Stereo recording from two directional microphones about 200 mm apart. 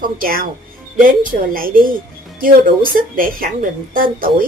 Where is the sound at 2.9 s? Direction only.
45° right (ahead or behind).